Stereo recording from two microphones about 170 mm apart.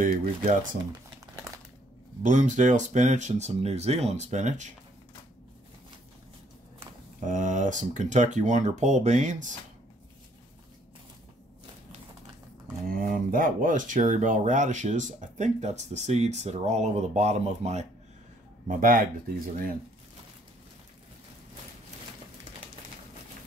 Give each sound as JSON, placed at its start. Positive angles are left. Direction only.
{"t": 2.2, "sound": "speech", "side_deg": -45}
{"t": 7.2, "sound": "speech", "side_deg": -45}
{"t": 12.8, "sound": "speech", "side_deg": -55}
{"t": 18.7, "sound": "speech", "side_deg": -55}